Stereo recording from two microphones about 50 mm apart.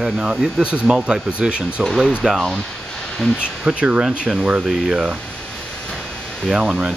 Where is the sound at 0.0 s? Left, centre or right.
Centre.